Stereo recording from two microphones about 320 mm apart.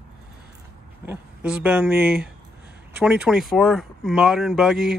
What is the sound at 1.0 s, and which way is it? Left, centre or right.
Speech, centre.